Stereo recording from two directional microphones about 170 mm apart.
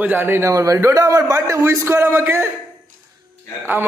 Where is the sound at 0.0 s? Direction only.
10° right (ahead or behind).